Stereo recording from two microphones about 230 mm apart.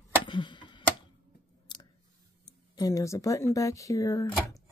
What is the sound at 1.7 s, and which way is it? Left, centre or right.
Clicking, centre.